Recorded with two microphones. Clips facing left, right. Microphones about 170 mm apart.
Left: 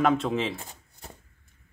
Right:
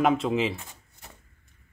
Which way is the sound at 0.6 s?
35° left (ahead or behind).